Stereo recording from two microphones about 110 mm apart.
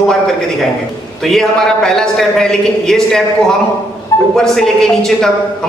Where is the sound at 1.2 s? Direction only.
5° left (ahead or behind).